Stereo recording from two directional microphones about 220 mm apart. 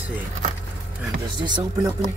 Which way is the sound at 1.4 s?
20° right (ahead or behind).